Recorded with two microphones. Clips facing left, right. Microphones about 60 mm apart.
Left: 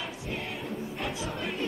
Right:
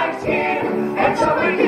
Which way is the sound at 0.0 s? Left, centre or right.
Right.